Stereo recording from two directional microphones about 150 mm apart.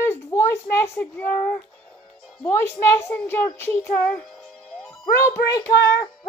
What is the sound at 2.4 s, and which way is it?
Speech, 15° left (ahead or behind).